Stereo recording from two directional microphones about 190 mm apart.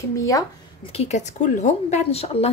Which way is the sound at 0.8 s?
35° left (ahead or behind).